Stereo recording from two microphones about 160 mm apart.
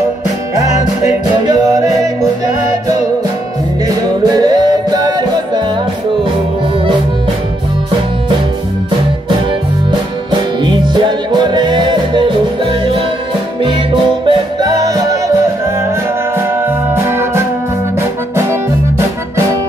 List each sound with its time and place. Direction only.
1.4 s music: 25° right (ahead or behind)
3.8 s music: 25° right (ahead or behind)
10.6 s music: 30° right (ahead or behind)
14.2 s music: 30° right (ahead or behind)